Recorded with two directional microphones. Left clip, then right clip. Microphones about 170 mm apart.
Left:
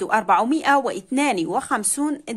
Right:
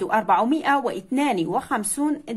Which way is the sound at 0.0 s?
25° left (ahead or behind).